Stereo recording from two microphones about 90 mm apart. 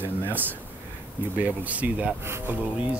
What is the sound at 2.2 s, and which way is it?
Speech, 25° right (ahead or behind).